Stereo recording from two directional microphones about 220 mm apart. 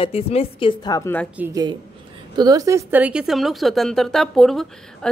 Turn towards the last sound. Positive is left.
turn(degrees=0)  # may be behind; listen again after turning